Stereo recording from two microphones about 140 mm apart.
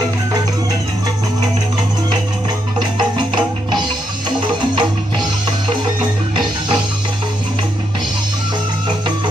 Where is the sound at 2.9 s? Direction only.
30° right (ahead or behind).